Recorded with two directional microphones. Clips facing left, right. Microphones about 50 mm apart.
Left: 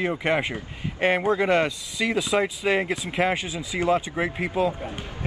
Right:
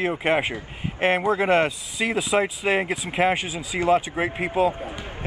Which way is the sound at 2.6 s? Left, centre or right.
Centre.